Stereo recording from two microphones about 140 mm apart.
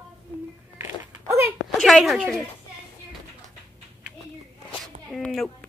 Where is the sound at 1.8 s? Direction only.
Centre (ahead or behind).